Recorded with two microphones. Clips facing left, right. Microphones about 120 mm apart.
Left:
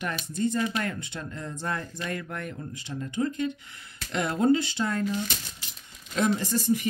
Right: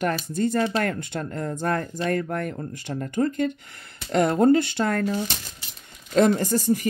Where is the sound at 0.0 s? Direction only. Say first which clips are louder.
Right 5 dB; 50° right (ahead or behind).